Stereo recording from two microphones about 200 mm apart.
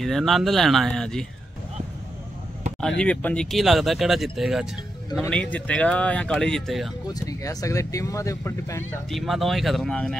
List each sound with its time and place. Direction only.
0.0 s speech: centre (ahead or behind)
3.0 s speech: 5° left (ahead or behind)
7.2 s speech: 15° left (ahead or behind)
9.1 s speech: centre (ahead or behind)